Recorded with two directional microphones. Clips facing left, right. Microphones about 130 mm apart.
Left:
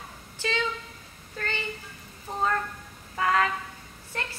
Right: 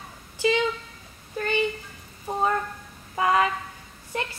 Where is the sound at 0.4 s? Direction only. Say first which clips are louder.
Right 7 dB; 15° right (ahead or behind).